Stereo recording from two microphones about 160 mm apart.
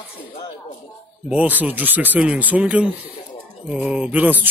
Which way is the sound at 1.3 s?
10° right (ahead or behind).